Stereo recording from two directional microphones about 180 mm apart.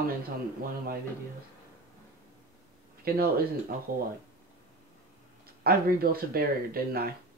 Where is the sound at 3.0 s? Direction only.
55° right (ahead or behind).